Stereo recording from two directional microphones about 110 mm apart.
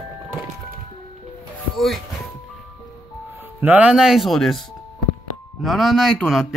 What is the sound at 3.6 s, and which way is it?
Speech, 15° right (ahead or behind).